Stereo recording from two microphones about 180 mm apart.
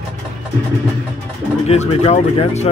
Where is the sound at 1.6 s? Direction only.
35° left (ahead or behind).